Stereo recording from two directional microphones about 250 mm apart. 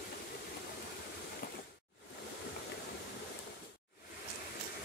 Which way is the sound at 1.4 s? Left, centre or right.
Left.